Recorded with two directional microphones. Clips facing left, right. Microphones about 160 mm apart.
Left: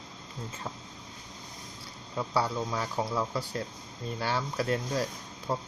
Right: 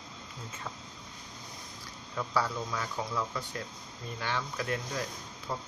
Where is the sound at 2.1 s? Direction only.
30° left (ahead or behind).